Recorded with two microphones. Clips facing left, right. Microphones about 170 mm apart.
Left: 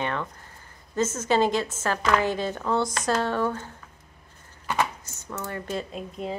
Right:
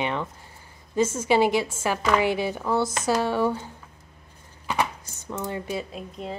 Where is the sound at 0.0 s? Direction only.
15° right (ahead or behind).